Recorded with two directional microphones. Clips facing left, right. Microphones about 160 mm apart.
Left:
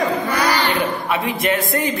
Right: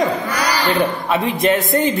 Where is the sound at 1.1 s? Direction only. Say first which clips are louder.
Right 3 dB; 20° right (ahead or behind).